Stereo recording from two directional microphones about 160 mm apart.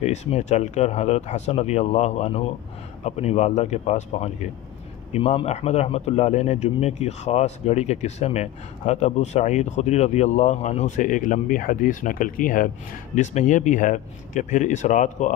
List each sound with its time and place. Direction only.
0.0 s a man's voice: 45° left (ahead or behind)